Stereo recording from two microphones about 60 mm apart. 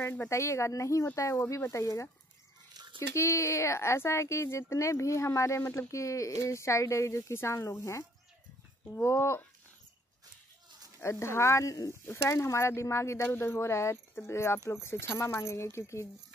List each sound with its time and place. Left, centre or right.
0.3 s speech: left
9.0 s speech: left
11.0 s speech: left
11.9 s speech: left